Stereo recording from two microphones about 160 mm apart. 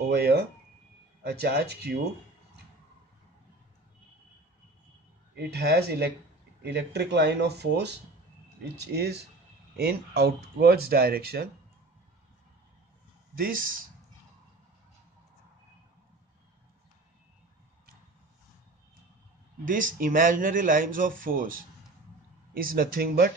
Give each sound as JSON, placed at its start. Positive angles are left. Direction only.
{"t": 0.1, "sound": "a sound", "side_deg": -90}
{"t": 1.2, "sound": "speech", "side_deg": -90}
{"t": 5.3, "sound": "speech", "side_deg": -85}
{"t": 9.8, "sound": "speech", "side_deg": -80}
{"t": 13.4, "sound": "speech", "side_deg": -60}
{"t": 19.6, "sound": "speech", "side_deg": -55}